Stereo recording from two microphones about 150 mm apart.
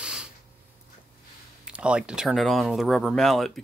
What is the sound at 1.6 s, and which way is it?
Speech, 5° right (ahead or behind).